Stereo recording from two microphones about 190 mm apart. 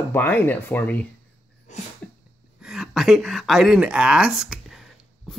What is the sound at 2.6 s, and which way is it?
Speech, 5° right (ahead or behind).